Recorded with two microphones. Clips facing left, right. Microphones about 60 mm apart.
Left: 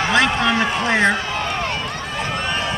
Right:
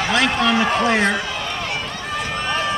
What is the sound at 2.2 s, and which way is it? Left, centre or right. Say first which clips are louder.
Run: even; left.